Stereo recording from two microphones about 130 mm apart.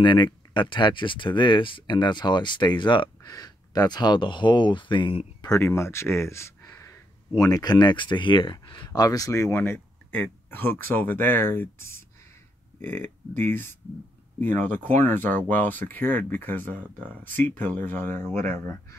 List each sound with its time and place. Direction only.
0.0 s speech: 40° left (ahead or behind)
5.5 s speech: 20° left (ahead or behind)